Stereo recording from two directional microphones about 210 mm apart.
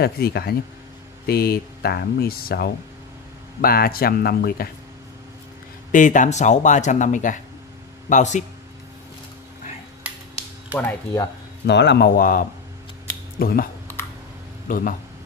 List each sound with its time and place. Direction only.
0.0 s speech: 50° left (ahead or behind)
5.9 s speech: 40° left (ahead or behind)
10.8 s speech: 10° left (ahead or behind)
11.6 s speech: 55° left (ahead or behind)
14.7 s speech: 40° left (ahead or behind)